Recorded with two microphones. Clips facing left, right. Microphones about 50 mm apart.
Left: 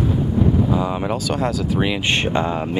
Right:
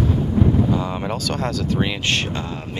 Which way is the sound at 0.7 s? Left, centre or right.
Centre.